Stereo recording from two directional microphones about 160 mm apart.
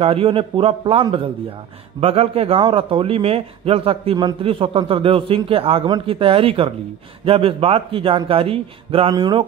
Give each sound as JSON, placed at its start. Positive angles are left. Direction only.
{"t": 0.0, "sound": "a man's voice", "side_deg": -35}